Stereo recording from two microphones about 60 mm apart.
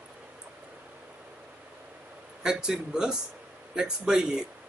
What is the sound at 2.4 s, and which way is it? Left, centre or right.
A man's voice, centre.